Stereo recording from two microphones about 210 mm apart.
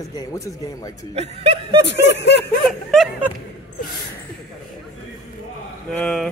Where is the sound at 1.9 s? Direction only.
55° left (ahead or behind).